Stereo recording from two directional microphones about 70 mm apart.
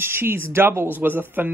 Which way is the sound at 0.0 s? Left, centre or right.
Right.